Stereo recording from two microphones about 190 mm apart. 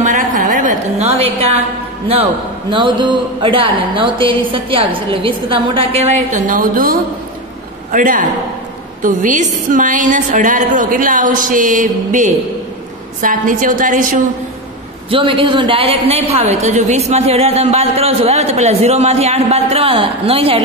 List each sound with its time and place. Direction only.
0.0 s a sound: 40° right (ahead or behind)
2.7 s a woman's voice: 25° right (ahead or behind); by 14.2 s 45° right (ahead or behind)
15.0 s a woman's voice: 25° right (ahead or behind)